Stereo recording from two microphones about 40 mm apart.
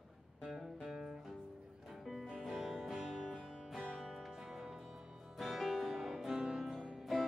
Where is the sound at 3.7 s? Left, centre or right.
Centre.